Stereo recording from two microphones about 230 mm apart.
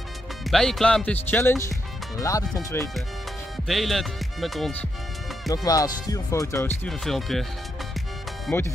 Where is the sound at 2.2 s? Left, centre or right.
Centre.